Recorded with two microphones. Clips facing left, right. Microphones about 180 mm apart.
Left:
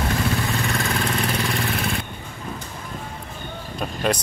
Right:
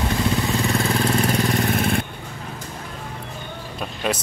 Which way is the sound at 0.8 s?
35° right (ahead or behind).